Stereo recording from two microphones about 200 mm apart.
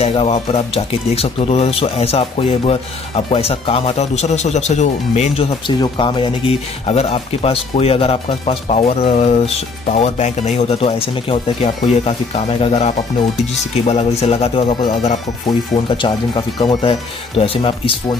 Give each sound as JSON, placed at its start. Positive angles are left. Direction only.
{"t": 0.0, "sound": "speech", "side_deg": 30}